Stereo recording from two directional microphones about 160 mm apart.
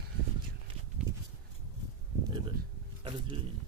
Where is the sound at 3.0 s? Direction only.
30° right (ahead or behind).